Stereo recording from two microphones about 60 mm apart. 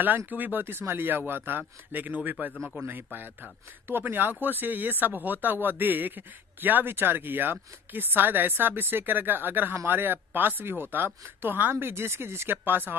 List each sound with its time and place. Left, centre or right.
0.3 s speech: right